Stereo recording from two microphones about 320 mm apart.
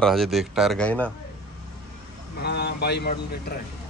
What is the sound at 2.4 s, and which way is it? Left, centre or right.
Speech, left.